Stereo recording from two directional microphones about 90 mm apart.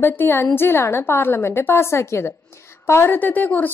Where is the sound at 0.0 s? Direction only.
25° left (ahead or behind).